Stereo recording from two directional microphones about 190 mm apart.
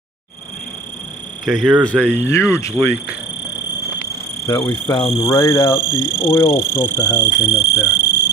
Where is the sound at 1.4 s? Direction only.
Centre (ahead or behind).